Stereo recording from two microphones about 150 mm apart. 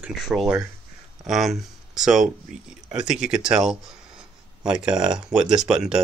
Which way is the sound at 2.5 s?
55° right (ahead or behind).